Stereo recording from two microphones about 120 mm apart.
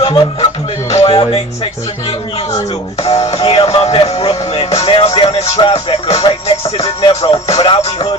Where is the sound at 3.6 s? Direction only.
30° left (ahead or behind).